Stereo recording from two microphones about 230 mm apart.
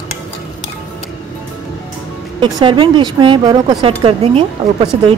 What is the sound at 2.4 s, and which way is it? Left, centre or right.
Speech, centre.